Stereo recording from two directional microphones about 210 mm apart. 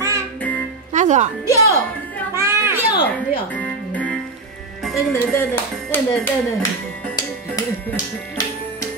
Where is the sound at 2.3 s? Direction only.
10° right (ahead or behind).